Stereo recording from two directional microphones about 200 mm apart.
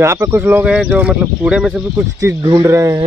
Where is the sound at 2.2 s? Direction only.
20° right (ahead or behind).